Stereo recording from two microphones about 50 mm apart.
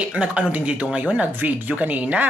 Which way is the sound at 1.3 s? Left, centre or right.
Right.